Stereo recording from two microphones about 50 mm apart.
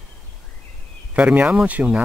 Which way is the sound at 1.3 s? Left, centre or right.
Right.